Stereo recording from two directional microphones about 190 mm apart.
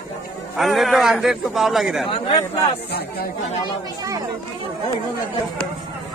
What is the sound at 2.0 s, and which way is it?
Speech, 30° left (ahead or behind).